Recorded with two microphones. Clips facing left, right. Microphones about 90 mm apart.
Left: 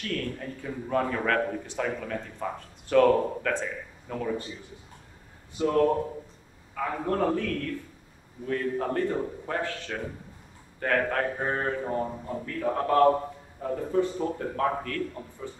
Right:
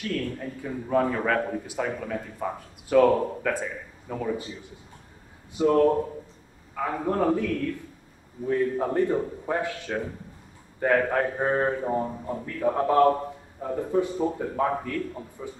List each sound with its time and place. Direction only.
0.0 s a man's voice: 5° right (ahead or behind)
5.6 s a man's voice: 10° right (ahead or behind)